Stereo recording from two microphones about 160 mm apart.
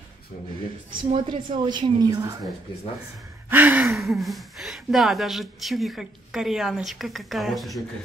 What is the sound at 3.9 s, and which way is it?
Speech, centre (ahead or behind).